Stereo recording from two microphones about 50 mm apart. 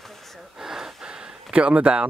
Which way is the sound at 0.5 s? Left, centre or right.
Centre.